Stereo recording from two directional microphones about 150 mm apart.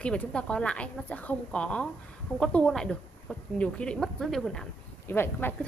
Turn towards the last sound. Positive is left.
turn(degrees=15)  # may be behind; listen again after turning